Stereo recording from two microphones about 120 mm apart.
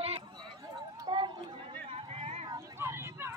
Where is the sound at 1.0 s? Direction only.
40° right (ahead or behind).